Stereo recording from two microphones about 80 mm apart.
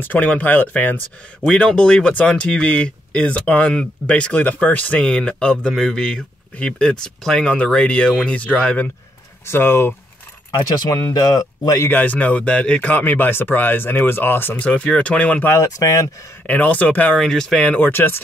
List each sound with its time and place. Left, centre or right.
0.0 s speech: left
1.4 s speech: centre
9.5 s speech: left
10.6 s speech: left
11.9 s speech: centre
15.4 s speech: left
16.4 s speech: centre
17.2 s speech: centre; by 18.2 s left